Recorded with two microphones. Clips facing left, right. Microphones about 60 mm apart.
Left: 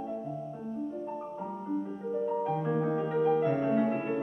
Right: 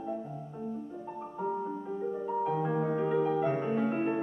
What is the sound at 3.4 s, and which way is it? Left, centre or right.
Music, right.